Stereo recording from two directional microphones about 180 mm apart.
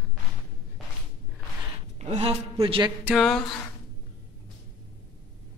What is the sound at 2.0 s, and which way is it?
Speech, 35° right (ahead or behind).